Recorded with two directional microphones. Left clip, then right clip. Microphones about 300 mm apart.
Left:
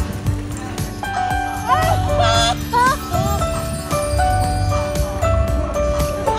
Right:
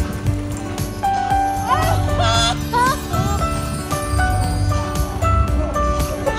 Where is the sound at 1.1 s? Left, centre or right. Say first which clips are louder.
Right 3 dB; centre.